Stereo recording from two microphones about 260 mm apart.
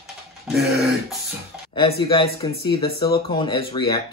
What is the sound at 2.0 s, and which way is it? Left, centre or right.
Speech, centre.